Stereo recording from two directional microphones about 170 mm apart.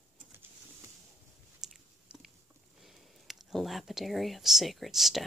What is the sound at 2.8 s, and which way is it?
Speech, centre (ahead or behind).